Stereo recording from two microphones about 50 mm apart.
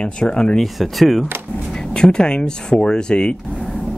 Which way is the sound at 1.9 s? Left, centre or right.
Centre.